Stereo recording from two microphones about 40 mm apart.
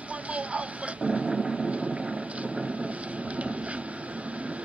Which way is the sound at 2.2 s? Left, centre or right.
Right.